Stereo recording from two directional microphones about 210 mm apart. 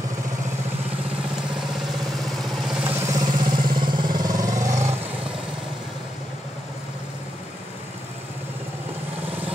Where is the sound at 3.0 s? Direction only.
15° right (ahead or behind).